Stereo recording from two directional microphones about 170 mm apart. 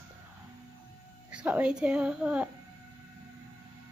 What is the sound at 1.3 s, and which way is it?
A woman's voice, 10° right (ahead or behind).